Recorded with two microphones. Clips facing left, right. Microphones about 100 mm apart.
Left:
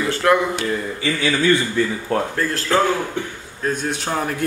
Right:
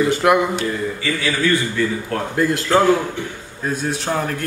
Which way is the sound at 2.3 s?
15° right (ahead or behind).